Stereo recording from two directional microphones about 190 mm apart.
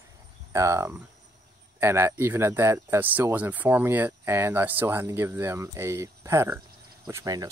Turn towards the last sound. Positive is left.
turn(degrees=-20)  # may be behind; listen again after turning